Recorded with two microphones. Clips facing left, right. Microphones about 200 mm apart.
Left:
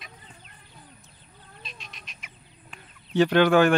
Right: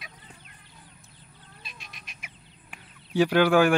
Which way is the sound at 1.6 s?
55° right (ahead or behind).